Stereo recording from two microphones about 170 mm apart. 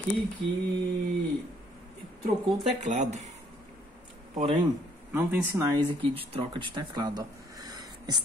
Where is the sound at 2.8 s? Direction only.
45° right (ahead or behind).